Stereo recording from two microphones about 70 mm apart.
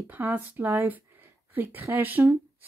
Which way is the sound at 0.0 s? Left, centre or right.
Right.